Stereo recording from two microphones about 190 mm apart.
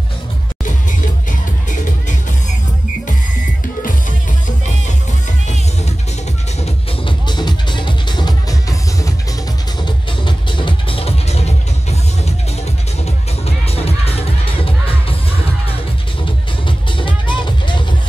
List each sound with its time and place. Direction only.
0.7 s music: 40° left (ahead or behind)
6.6 s music: 25° left (ahead or behind)
13.7 s music: 30° left (ahead or behind)
16.6 s music: 25° left (ahead or behind)